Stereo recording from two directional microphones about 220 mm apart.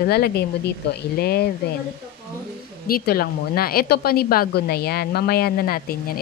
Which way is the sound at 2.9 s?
45° left (ahead or behind).